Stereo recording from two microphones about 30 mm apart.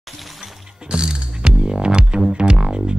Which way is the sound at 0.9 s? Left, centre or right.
Right.